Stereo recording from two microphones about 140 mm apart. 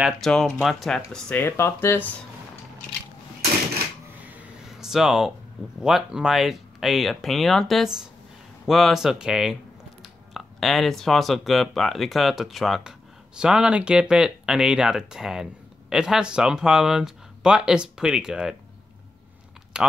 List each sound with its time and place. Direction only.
0.0 s speech: 5° left (ahead or behind)
1.4 s speech: 15° left (ahead or behind)
4.3 s a sound: 5° right (ahead or behind)
5.8 s speech: 5° right (ahead or behind)
19.7 s speech: 5° right (ahead or behind)